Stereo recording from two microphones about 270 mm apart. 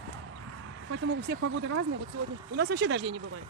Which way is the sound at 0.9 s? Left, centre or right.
Right.